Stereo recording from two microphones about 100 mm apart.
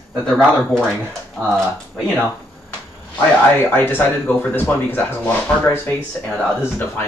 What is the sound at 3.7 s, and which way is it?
Speech, 20° left (ahead or behind).